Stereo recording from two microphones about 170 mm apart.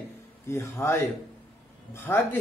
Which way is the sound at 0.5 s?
15° left (ahead or behind).